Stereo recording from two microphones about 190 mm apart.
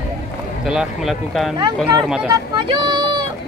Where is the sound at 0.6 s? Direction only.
Centre (ahead or behind).